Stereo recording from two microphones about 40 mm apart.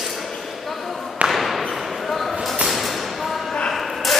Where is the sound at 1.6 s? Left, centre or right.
Centre.